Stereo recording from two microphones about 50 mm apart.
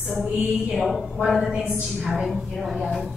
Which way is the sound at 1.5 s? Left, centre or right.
Centre.